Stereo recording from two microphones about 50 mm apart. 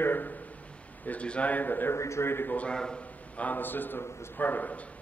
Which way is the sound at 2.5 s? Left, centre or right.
Left.